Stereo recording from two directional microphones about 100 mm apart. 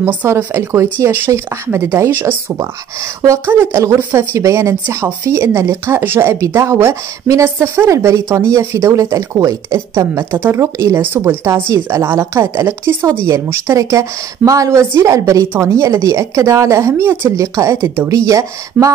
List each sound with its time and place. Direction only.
0.0 s a woman's voice: 20° right (ahead or behind)